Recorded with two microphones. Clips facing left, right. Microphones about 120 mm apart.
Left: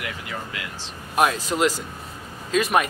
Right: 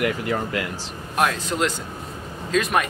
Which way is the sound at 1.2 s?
5° left (ahead or behind).